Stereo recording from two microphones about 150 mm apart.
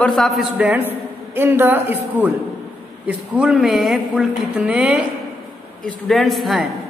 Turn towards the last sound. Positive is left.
turn(degrees=0)  # may be behind; listen again after turning